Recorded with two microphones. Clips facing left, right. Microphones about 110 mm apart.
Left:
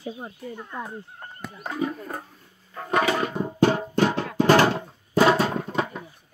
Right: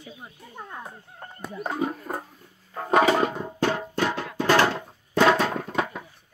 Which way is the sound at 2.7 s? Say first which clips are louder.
Right 3 dB; 10° right (ahead or behind).